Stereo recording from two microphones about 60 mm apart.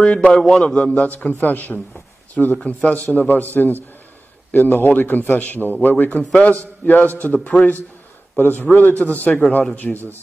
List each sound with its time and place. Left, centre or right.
0.0 s a man's voice: centre
1.4 s a man's voice: left
8.4 s a man's voice: left